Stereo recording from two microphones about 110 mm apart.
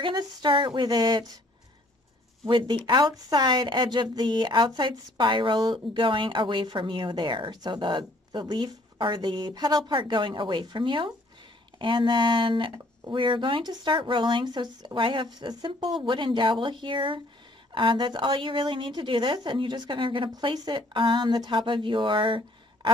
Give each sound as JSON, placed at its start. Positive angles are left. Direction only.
{"t": 0.0, "sound": "speech", "side_deg": -40}
{"t": 2.4, "sound": "speech", "side_deg": -45}